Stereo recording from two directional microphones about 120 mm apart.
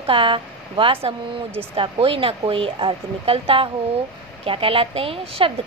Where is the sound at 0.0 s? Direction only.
45° right (ahead or behind).